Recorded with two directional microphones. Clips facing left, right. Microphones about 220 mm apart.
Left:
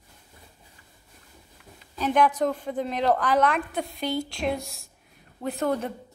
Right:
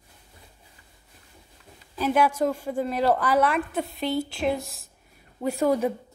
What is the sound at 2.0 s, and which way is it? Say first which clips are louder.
A woman's voice: even; 10° right (ahead or behind).